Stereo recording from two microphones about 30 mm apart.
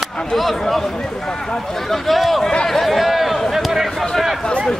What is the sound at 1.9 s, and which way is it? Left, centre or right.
Speech, centre.